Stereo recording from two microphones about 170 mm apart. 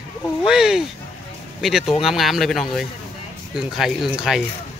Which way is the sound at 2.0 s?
Centre (ahead or behind).